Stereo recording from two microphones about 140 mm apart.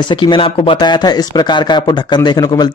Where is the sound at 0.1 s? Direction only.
35° left (ahead or behind).